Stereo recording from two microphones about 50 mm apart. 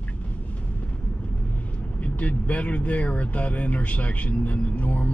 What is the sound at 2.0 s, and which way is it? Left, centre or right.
Speech, left.